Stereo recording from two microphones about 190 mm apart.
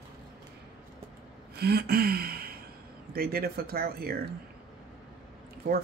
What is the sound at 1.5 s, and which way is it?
Gasp, 55° right (ahead or behind).